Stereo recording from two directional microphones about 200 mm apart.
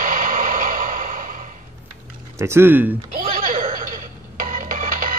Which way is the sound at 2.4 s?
10° right (ahead or behind).